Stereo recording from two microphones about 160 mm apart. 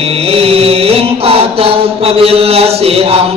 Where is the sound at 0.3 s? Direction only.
40° right (ahead or behind).